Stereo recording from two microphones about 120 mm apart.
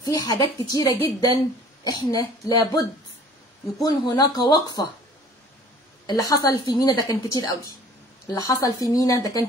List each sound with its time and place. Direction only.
0.0 s a woman's voice: 30° left (ahead or behind)
3.8 s speech: 40° left (ahead or behind)
6.0 s a woman's voice: 30° left (ahead or behind)